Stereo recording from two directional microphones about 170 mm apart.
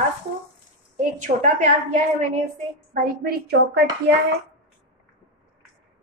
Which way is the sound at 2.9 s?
60° right (ahead or behind).